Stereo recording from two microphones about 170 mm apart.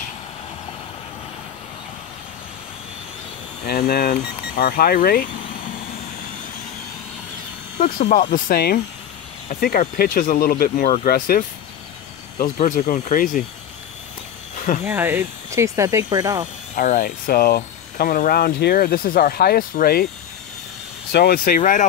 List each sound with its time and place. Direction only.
3.6 s speech: 65° left (ahead or behind)
8.1 s speech: 50° left (ahead or behind)
12.5 s speech: 45° left (ahead or behind)
14.9 s speech: 10° right (ahead or behind)
16.7 s speech: 50° left (ahead or behind)
21.1 s speech: 65° left (ahead or behind)